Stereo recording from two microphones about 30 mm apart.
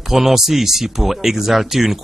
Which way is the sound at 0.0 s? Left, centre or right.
Centre.